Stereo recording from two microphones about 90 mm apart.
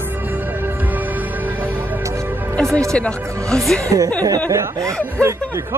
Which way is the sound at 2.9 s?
10° left (ahead or behind).